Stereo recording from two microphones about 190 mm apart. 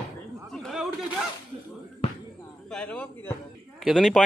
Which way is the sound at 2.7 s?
5° left (ahead or behind).